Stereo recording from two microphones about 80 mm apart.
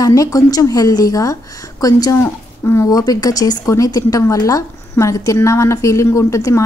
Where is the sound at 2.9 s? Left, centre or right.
Left.